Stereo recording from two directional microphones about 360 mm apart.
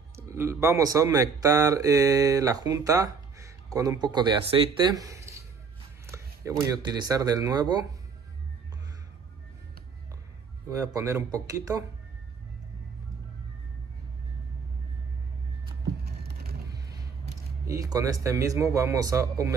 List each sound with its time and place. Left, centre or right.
0.1 s speech: centre
10.7 s speech: centre
16.1 s a sound: right
17.6 s speech: centre